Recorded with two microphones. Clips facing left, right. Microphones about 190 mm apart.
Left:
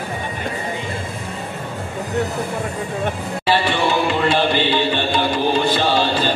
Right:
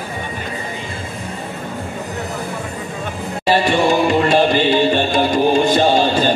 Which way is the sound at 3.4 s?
45° right (ahead or behind).